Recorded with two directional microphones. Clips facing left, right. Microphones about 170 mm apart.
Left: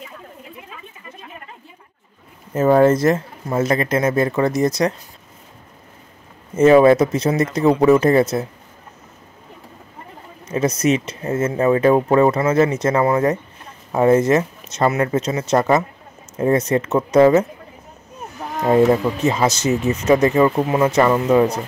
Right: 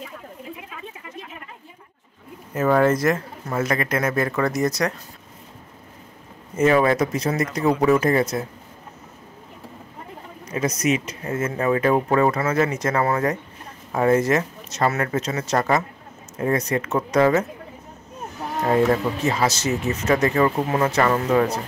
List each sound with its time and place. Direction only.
2.5 s speech: 25° left (ahead or behind)
6.5 s speech: 25° left (ahead or behind)
10.4 s speech: 25° left (ahead or behind)
18.7 s speech: 25° left (ahead or behind)